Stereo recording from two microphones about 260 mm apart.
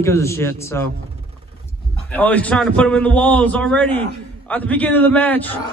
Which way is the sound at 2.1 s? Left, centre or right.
Centre.